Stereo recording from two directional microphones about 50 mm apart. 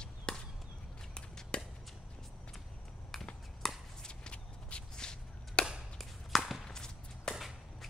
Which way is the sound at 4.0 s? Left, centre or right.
Left.